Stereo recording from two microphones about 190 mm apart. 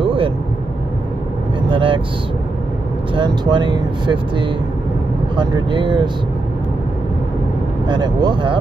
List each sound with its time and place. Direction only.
0.0 s vehicle: 30° right (ahead or behind)
1.7 s vehicle: 25° right (ahead or behind)
3.2 s speech: 25° right (ahead or behind)
7.9 s speech: 20° right (ahead or behind)